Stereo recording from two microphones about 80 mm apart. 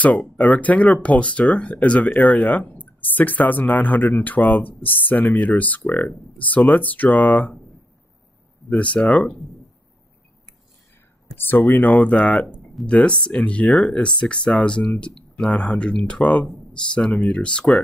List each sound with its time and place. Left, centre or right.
0.0 s speech: centre
8.6 s speech: centre
11.3 s speech: left